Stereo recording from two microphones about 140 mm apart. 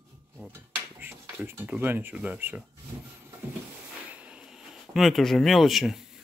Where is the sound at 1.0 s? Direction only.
15° right (ahead or behind).